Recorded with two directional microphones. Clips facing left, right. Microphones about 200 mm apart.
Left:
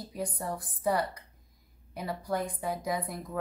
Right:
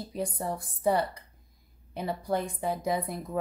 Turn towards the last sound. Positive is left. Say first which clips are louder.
# right 3 dB
turn(degrees=-25)  # may be behind; listen again after turning